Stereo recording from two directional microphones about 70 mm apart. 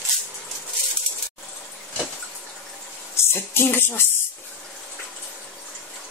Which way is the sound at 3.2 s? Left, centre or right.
Left.